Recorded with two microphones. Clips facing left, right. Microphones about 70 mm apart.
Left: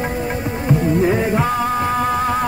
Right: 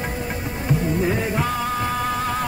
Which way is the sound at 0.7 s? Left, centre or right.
Centre.